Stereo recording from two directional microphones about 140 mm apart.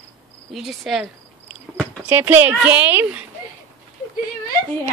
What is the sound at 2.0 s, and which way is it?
Speech, 15° right (ahead or behind).